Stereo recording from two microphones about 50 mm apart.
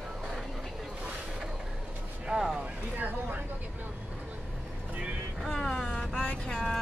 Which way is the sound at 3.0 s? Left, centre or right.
Right.